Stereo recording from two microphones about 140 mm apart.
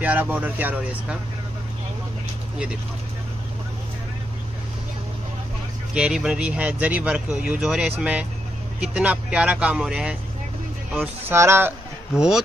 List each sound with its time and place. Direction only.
0.0 s speech: 10° right (ahead or behind)
5.9 s speech: 5° right (ahead or behind)
11.2 s speech: 20° right (ahead or behind)
12.2 s speech: 5° right (ahead or behind)